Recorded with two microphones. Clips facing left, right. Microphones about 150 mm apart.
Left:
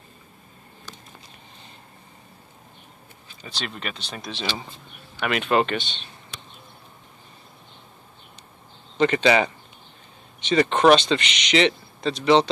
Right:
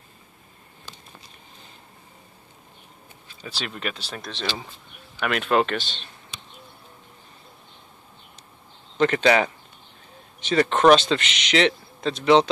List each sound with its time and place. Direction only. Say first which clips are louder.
3.4 s speech: right 2 dB; 5° right (ahead or behind)
8.9 s speech: even; centre (ahead or behind)